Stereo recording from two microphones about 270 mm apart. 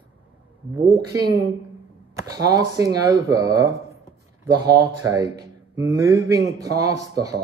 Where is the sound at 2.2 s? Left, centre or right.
Centre.